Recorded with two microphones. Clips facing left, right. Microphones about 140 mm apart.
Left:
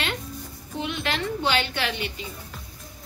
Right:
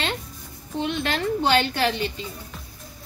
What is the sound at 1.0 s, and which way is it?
A woman's voice, 40° right (ahead or behind).